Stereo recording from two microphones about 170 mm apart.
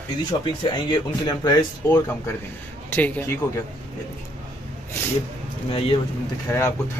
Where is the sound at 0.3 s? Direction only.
25° left (ahead or behind).